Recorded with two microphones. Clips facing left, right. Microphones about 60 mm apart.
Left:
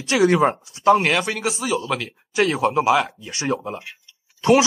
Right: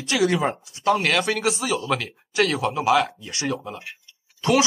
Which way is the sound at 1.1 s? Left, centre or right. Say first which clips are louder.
Right 1 dB; centre.